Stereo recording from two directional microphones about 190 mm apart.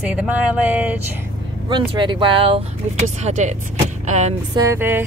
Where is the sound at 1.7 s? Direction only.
25° right (ahead or behind).